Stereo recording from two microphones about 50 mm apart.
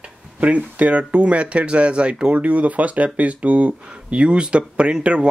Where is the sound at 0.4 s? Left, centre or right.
Right.